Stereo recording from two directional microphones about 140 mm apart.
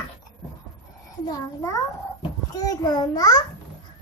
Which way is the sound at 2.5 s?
25° left (ahead or behind).